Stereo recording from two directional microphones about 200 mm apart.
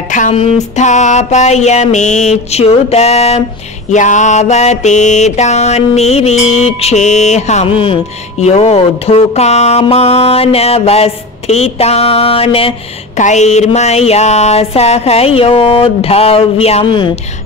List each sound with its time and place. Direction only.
0.1 s mantra: 35° left (ahead or behind)